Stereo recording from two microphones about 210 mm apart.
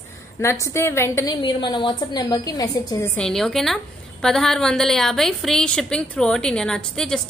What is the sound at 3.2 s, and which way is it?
A woman's voice, centre (ahead or behind).